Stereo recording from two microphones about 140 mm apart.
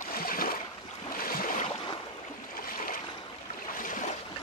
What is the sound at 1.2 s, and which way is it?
Boat, 90° left.